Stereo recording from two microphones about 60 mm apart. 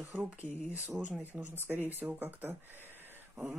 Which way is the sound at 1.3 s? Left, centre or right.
Right.